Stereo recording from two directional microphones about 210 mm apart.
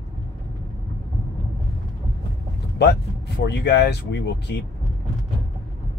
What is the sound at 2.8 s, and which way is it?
Speech, 55° left (ahead or behind).